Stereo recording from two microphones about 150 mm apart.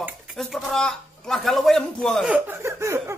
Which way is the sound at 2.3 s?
15° right (ahead or behind).